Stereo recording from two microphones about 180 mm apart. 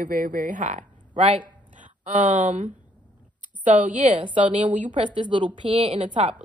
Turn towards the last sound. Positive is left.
turn(degrees=-30)  # may be behind; listen again after turning